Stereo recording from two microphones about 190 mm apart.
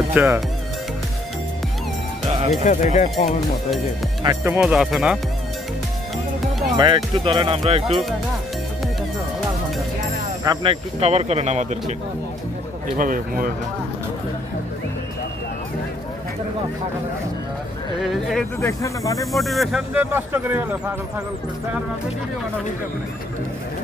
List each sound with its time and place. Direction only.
0.1 s speech: 10° right (ahead or behind)
2.6 s speech: 40° left (ahead or behind)
4.2 s speech: 20° right (ahead or behind)
4.6 s speech: centre (ahead or behind)
6.8 s speech: 25° right (ahead or behind)
10.4 s speech: 25° right (ahead or behind)
12.9 s speech: 45° right (ahead or behind)
18.0 s speech: centre (ahead or behind)
18.6 s speech: 15° left (ahead or behind)
19.3 s speech: centre (ahead or behind)